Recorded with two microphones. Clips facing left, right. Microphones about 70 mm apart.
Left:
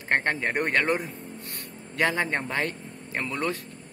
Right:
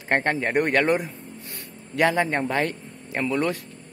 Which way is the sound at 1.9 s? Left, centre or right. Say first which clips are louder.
Right 4 dB; right.